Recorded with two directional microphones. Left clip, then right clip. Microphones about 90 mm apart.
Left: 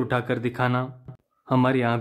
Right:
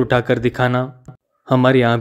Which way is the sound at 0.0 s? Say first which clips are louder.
Right 9 dB; 35° right (ahead or behind).